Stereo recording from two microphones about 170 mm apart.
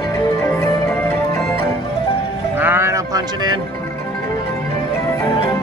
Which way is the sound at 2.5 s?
10° right (ahead or behind).